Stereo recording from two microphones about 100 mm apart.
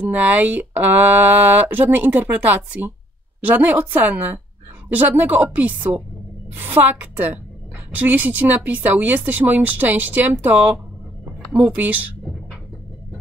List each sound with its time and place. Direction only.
0.1 s speech: 15° right (ahead or behind)